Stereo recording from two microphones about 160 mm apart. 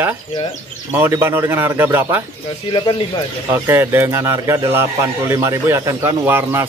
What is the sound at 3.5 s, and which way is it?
A man's voice, 15° right (ahead or behind).